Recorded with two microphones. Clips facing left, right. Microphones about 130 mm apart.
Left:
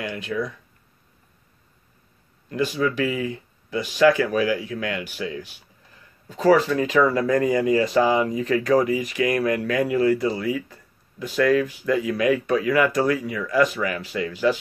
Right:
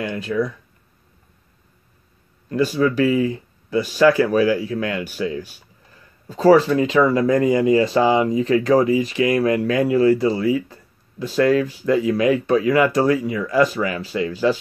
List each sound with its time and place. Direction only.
0.0 s speech: 35° right (ahead or behind)
2.5 s speech: 35° right (ahead or behind)